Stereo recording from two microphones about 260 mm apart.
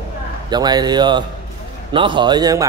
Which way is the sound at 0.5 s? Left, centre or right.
Centre.